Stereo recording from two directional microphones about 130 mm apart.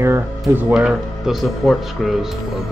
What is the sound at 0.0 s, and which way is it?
Speech, 15° right (ahead or behind).